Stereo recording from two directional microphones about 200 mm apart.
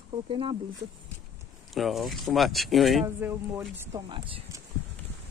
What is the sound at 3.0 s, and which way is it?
Speech, 10° right (ahead or behind).